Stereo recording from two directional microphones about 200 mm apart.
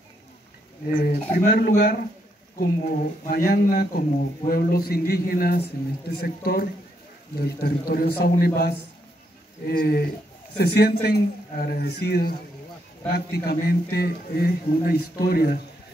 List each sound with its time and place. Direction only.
0.9 s a man's voice: 45° left (ahead or behind)